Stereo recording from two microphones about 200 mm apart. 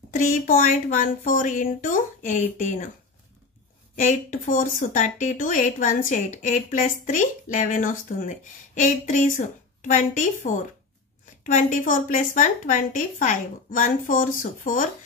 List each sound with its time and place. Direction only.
0.1 s speech: 45° left (ahead or behind)
4.0 s speech: 35° left (ahead or behind)